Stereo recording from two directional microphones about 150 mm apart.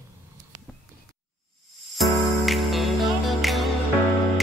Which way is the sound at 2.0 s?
Centre (ahead or behind).